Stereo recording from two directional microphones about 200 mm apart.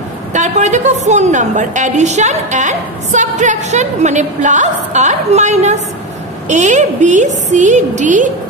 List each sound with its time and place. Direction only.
0.3 s a woman's voice: 35° right (ahead or behind)